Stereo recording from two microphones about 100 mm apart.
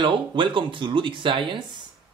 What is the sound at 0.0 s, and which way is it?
Speech, 55° right (ahead or behind).